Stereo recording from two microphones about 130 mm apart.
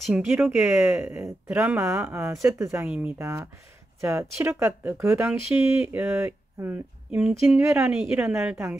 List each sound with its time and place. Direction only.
0.1 s speech: 5° right (ahead or behind)
1.0 s speech: 20° right (ahead or behind)
2.9 s speech: 10° right (ahead or behind)
3.2 s speech: 20° right (ahead or behind); by 8.5 s 5° right (ahead or behind)